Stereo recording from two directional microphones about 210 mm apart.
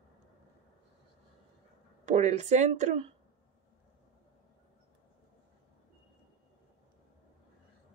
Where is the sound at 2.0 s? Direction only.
35° right (ahead or behind).